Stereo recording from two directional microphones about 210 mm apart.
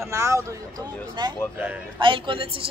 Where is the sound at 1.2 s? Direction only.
20° right (ahead or behind).